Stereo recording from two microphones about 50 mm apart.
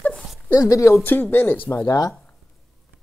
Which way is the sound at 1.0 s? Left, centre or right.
Left.